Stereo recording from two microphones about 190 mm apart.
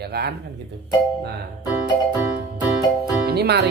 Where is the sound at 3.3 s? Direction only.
60° right (ahead or behind).